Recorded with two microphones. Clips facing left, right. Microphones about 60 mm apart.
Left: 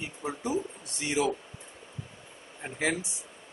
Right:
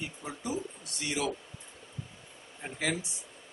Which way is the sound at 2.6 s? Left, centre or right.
Centre.